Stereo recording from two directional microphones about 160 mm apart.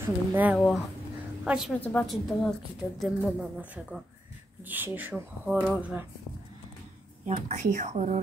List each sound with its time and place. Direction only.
0.0 s speech: 15° right (ahead or behind)
0.6 s a woman's voice: centre (ahead or behind)
1.8 s a woman's voice: 10° left (ahead or behind); by 6.0 s 10° right (ahead or behind)
7.2 s speech: 50° right (ahead or behind)